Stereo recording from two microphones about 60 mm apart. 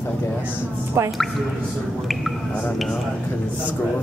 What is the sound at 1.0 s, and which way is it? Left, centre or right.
Speech, right.